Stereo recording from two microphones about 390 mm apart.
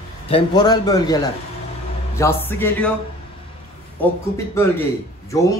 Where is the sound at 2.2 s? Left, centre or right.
Centre.